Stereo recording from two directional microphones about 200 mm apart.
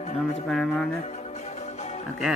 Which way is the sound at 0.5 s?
Centre (ahead or behind).